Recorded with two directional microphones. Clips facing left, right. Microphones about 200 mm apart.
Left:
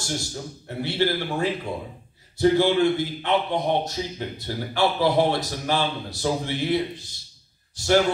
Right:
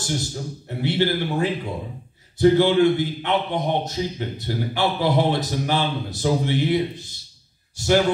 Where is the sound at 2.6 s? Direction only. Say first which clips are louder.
Right 3 dB; 20° right (ahead or behind).